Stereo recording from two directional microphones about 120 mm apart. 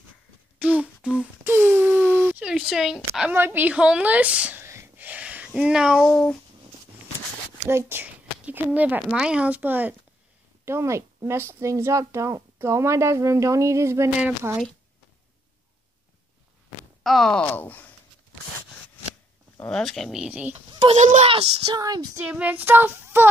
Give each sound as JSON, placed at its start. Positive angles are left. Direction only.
{"t": 0.6, "sound": "a sound", "side_deg": -10}
{"t": 3.3, "sound": "speech", "side_deg": -15}
{"t": 4.6, "sound": "a sound", "side_deg": -20}
{"t": 5.5, "sound": "speech", "side_deg": -5}
{"t": 7.6, "sound": "speech", "side_deg": -20}
{"t": 14.2, "sound": "speech", "side_deg": -15}
{"t": 17.0, "sound": "speech", "side_deg": 5}
{"t": 19.7, "sound": "speech", "side_deg": 0}
{"t": 20.9, "sound": "speech", "side_deg": -75}
{"t": 21.7, "sound": "speech", "side_deg": -35}
{"t": 22.2, "sound": "speech", "side_deg": -10}